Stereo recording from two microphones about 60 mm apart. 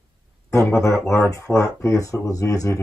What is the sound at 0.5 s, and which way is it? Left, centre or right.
Speech, left.